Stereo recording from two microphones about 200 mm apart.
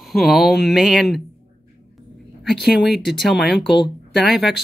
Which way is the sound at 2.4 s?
Centre (ahead or behind).